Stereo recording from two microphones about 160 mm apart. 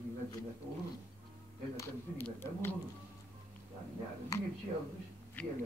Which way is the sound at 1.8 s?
15° left (ahead or behind).